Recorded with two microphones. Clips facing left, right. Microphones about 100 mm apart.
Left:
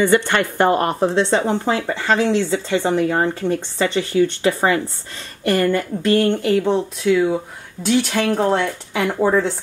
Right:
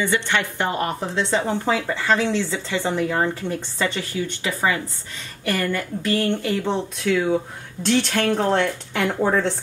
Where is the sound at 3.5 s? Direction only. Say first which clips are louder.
Left 5 dB; 20° left (ahead or behind).